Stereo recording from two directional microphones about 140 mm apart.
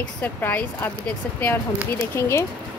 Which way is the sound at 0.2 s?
15° left (ahead or behind).